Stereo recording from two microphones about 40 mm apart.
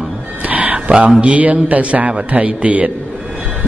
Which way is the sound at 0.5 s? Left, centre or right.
Right.